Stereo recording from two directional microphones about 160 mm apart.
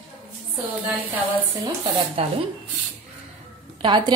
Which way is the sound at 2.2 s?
35° right (ahead or behind).